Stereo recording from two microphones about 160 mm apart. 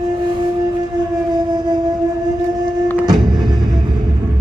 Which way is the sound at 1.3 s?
25° right (ahead or behind).